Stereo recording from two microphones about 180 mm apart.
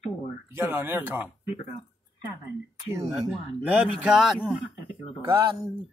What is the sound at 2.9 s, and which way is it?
Speech, 15° right (ahead or behind).